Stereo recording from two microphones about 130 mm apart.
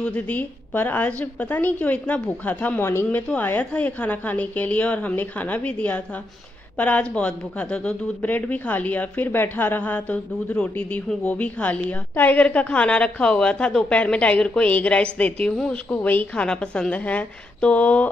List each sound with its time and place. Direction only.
0.0 s speech: 10° left (ahead or behind)